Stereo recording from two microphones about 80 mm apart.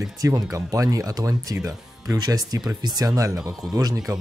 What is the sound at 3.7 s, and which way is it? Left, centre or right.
Speech, right.